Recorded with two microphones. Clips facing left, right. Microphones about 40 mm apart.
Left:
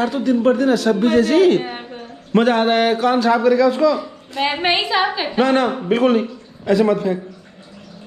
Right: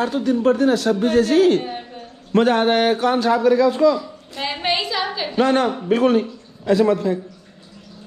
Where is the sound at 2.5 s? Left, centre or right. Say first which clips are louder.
Left 1 dB; left.